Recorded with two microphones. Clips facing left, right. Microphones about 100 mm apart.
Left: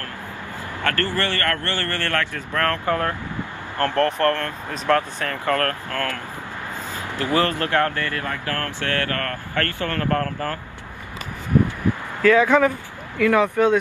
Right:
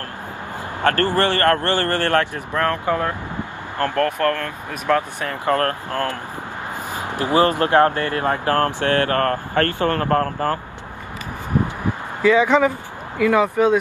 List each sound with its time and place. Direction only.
1.0 s speech: 20° right (ahead or behind)
9.1 s speech: 35° right (ahead or behind)
12.2 s speech: 15° right (ahead or behind)